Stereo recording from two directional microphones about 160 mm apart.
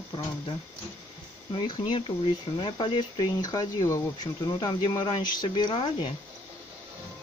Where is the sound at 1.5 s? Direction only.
30° left (ahead or behind).